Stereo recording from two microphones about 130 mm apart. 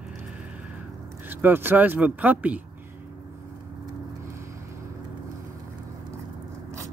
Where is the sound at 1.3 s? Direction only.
15° right (ahead or behind).